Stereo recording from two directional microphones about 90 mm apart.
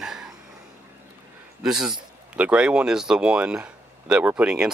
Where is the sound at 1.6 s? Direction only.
5° right (ahead or behind).